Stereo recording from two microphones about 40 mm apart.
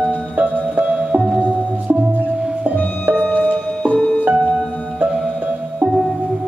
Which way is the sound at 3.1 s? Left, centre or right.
Right.